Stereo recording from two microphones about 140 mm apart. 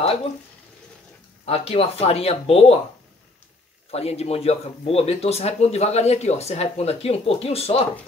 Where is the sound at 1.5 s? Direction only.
45° left (ahead or behind).